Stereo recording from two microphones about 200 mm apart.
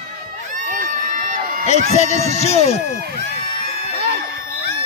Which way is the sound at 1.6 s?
35° left (ahead or behind).